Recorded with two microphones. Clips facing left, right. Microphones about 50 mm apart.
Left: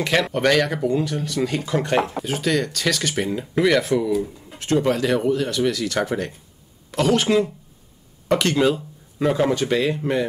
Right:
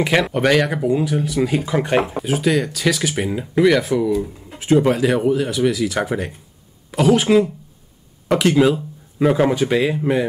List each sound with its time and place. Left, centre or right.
0.0 s speech: centre